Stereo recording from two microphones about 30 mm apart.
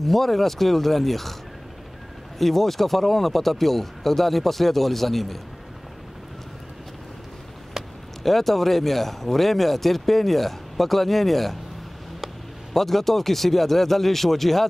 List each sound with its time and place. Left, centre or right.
0.0 s speech: centre
2.3 s speech: centre
7.8 s a sound: centre
8.2 s speech: centre
12.7 s speech: centre